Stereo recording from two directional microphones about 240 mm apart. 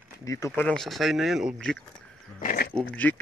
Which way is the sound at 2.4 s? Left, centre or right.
Left.